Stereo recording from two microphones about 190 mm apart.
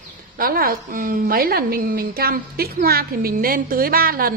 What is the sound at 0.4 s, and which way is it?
A woman's voice, 50° right (ahead or behind).